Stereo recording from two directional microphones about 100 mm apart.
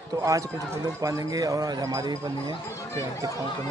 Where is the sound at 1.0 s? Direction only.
35° right (ahead or behind).